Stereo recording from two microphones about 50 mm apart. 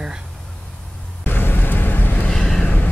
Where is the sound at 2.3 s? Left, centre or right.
Centre.